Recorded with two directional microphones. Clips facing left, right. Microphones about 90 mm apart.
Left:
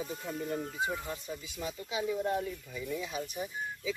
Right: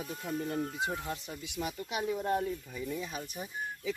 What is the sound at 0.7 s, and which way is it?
Speech, 80° right.